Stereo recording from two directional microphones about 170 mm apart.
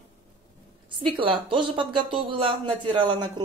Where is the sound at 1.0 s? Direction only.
30° right (ahead or behind).